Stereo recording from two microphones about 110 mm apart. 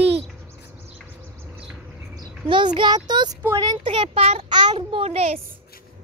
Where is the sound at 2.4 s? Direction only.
45° right (ahead or behind).